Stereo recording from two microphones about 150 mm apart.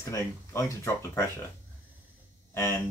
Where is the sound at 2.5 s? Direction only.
15° left (ahead or behind).